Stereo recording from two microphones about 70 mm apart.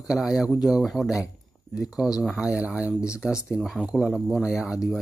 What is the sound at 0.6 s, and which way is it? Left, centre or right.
Speech, centre.